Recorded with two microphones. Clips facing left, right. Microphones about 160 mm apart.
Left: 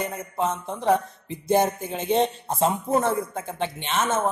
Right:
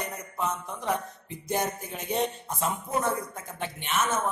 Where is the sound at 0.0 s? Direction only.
30° left (ahead or behind).